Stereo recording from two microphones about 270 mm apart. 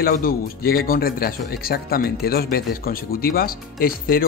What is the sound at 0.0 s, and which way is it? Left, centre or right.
Speech, left.